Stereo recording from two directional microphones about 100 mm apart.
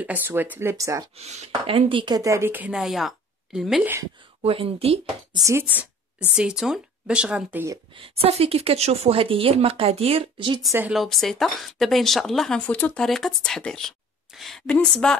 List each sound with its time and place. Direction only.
0.0 s speech: 20° right (ahead or behind)
1.1 s speech: 90° right; by 2.1 s 60° right (ahead or behind)
2.1 s speech: 30° right (ahead or behind)
2.7 s speech: 5° right (ahead or behind)
4.4 s speech: 75° right (ahead or behind)
5.4 s speech: 30° right (ahead or behind)
6.3 s speech: 5° right (ahead or behind)
7.9 s speech: 70° right (ahead or behind)
10.9 s speech: centre (ahead or behind)
13.0 s a woman's voice: 5° left (ahead or behind)